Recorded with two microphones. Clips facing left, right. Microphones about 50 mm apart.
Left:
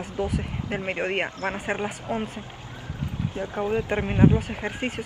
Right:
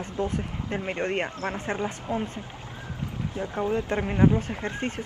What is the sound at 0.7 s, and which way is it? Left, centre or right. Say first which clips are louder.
Speech: left 1 dB; centre.